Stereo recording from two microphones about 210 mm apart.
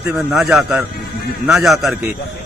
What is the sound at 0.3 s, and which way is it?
Speech, 5° right (ahead or behind).